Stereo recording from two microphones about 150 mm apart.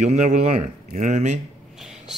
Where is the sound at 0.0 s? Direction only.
50° right (ahead or behind).